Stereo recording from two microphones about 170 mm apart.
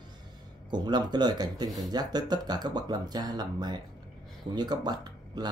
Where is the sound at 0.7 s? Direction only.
25° right (ahead or behind).